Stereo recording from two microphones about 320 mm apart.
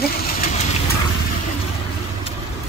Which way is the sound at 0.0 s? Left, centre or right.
Left.